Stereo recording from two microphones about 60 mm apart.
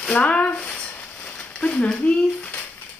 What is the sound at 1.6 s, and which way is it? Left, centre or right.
Speech, centre.